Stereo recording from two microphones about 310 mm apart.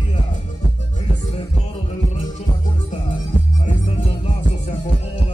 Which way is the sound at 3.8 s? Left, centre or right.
Centre.